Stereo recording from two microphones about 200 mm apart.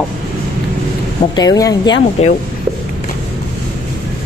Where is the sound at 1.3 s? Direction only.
20° left (ahead or behind).